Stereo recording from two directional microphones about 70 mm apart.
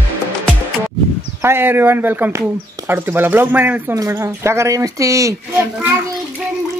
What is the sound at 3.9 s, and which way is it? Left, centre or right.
Speech, right.